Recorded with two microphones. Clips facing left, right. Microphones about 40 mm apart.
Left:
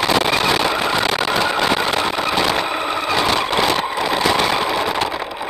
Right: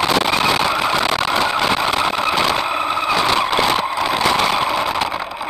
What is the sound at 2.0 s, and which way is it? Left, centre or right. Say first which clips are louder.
Vehicle: right 1 dB; centre.